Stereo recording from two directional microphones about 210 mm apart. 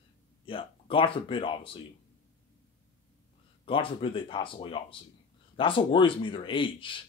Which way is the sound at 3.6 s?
25° left (ahead or behind).